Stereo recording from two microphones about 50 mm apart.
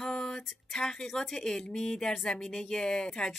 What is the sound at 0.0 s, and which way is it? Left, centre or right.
Speech, centre.